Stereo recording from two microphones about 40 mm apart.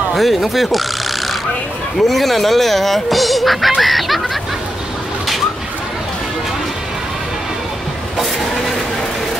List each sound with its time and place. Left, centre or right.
0.1 s speech: centre
2.0 s speech: centre
3.8 s goose: centre